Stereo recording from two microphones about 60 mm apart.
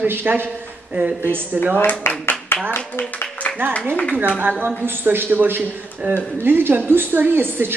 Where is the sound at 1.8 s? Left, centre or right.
Left.